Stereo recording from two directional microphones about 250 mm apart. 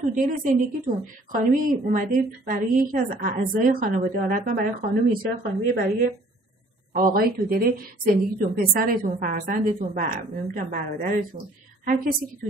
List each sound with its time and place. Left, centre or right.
0.1 s a woman's voice: right